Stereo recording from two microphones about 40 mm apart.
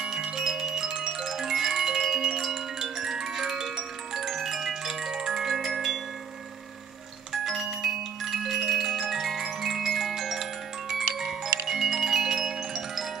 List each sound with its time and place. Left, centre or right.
0.0 s music: centre
7.4 s marimba: centre